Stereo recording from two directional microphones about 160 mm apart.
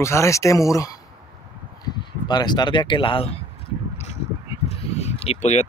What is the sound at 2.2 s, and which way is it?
Speech, 25° left (ahead or behind).